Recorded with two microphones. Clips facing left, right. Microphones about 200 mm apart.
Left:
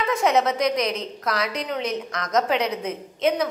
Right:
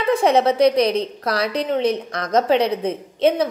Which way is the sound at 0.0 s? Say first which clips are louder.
Right 4 dB; 30° right (ahead or behind).